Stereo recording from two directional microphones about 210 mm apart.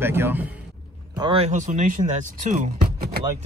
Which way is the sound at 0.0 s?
10° right (ahead or behind).